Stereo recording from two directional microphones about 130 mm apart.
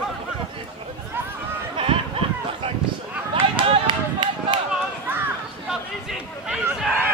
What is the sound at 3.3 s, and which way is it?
Run, 45° right (ahead or behind).